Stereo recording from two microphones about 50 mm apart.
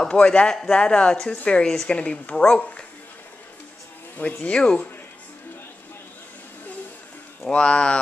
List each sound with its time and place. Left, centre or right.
0.0 s speech: left
4.2 s speech: left
4.5 s speech: left
7.4 s speech: centre